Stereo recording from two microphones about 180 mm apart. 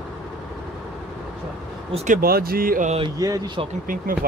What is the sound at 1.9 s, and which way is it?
Speech, 45° right (ahead or behind).